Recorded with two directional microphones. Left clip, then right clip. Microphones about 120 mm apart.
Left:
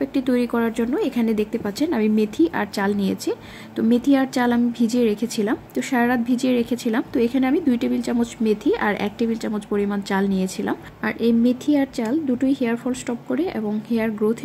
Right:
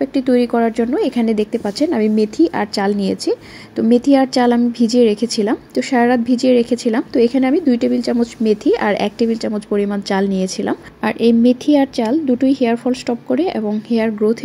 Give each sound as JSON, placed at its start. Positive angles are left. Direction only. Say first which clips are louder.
{"t": 0.0, "sound": "a woman's voice", "louder": "right 6 dB", "side_deg": -25}